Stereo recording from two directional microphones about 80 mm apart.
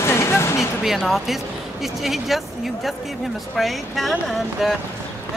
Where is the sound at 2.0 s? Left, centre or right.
Centre.